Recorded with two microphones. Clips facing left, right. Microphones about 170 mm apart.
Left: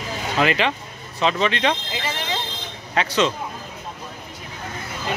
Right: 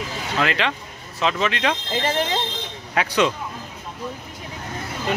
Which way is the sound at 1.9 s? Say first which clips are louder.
Right 5 dB; 45° right (ahead or behind).